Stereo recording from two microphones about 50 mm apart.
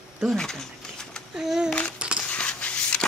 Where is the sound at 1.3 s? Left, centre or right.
Centre.